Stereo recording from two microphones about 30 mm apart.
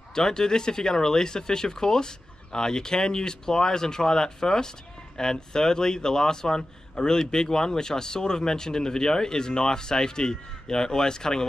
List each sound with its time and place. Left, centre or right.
0.1 s speech: left